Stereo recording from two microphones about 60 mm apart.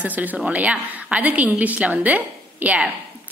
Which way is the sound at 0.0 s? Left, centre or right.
Right.